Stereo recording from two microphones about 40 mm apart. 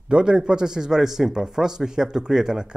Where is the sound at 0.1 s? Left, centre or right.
Centre.